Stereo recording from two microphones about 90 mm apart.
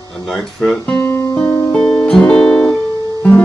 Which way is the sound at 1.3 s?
10° left (ahead or behind).